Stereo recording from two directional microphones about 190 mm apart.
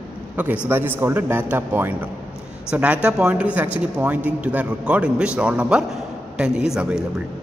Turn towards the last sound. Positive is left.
turn(degrees=-5)  # may be behind; listen again after turning